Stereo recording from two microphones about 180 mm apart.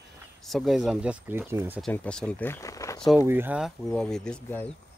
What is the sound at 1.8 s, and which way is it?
Speech, 5° left (ahead or behind).